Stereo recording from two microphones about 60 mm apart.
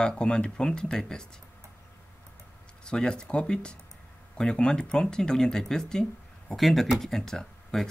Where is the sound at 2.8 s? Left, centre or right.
Centre.